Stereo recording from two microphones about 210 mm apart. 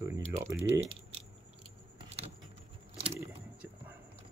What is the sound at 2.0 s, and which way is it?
Vehicle, 30° right (ahead or behind).